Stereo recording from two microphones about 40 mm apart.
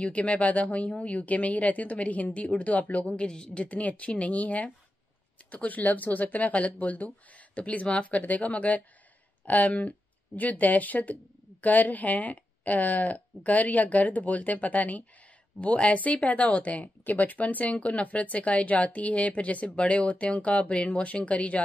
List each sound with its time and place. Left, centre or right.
0.0 s speech: left
3.1 s a woman's voice: left
3.5 s speech: left